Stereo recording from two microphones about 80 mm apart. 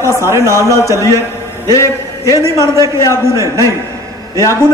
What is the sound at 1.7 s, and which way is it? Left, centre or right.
Speech, left.